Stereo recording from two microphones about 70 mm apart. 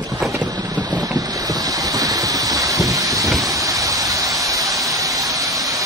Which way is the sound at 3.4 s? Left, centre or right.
Right.